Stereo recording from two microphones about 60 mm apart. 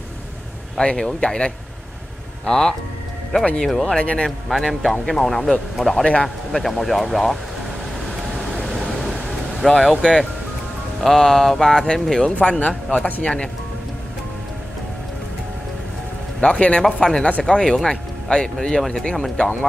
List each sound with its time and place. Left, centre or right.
0.7 s speech: centre
3.3 s speech: left
4.5 s speech: centre
8.4 s a sound: centre
11.0 s speech: centre
16.3 s speech: left